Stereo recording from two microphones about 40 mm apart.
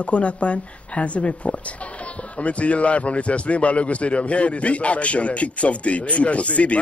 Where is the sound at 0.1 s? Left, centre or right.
Left.